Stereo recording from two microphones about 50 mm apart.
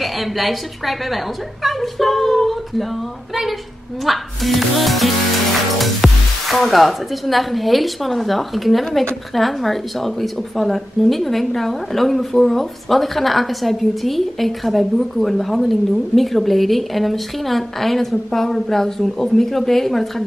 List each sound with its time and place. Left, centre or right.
0.0 s speech: centre
4.0 s speech: centre